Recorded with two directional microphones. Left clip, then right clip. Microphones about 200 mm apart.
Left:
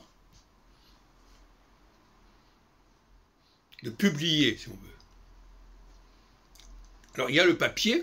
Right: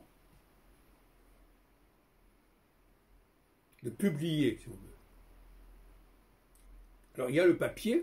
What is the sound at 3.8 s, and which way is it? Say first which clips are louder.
Speech: left 6 dB; 15° right (ahead or behind).